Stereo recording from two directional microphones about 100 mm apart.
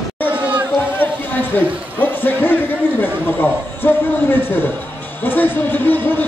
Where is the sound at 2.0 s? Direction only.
20° left (ahead or behind).